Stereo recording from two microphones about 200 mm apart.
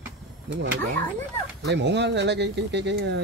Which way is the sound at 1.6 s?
60° right (ahead or behind).